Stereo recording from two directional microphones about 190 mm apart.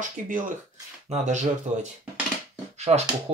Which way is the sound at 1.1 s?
40° right (ahead or behind).